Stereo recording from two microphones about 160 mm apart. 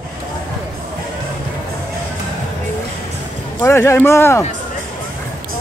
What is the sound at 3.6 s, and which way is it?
Speech, 15° left (ahead or behind).